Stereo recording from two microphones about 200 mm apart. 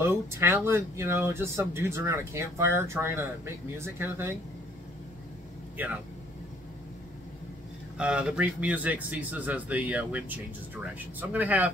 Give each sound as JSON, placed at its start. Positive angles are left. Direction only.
{"t": 0.0, "sound": "speech", "side_deg": -10}
{"t": 5.8, "sound": "speech", "side_deg": -10}
{"t": 8.0, "sound": "speech", "side_deg": -5}